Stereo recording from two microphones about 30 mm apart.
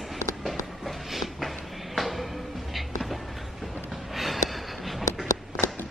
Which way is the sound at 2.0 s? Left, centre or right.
Centre.